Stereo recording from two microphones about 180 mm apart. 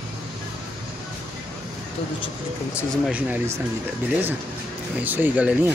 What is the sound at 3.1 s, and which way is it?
Speech, 10° right (ahead or behind).